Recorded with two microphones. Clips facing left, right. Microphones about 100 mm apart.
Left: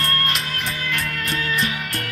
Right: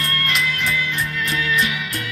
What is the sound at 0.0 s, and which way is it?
Music, 35° left (ahead or behind).